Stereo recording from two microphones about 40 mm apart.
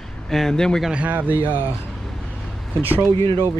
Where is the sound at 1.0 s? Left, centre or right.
Right.